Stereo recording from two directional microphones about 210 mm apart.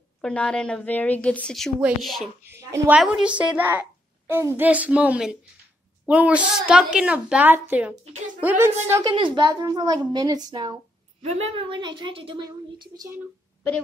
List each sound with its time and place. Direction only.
0.2 s a woman's voice: 5° left (ahead or behind)
2.4 s a woman's voice: 10° right (ahead or behind)
9.1 s a woman's voice: 20° right (ahead or behind)